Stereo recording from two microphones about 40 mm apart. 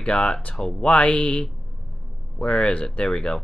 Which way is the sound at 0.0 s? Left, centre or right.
Left.